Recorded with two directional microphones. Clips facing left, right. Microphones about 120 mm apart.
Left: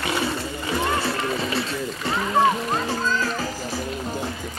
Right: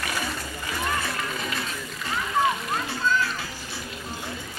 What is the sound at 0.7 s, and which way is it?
Music, 30° left (ahead or behind).